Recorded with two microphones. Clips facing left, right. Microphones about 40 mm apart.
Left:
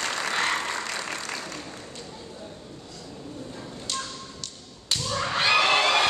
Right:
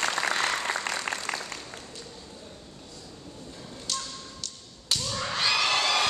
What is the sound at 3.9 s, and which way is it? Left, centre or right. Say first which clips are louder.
Tap: left 2 dB; centre.